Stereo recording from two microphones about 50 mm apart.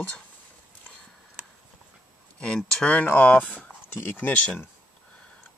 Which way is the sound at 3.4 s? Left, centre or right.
Left.